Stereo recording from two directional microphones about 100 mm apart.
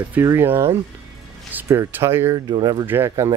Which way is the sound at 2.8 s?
25° right (ahead or behind).